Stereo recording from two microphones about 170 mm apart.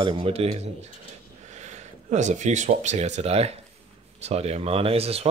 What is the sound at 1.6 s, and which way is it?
Speech, 45° right (ahead or behind).